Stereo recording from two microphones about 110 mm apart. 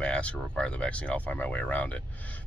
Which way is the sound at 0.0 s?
10° left (ahead or behind).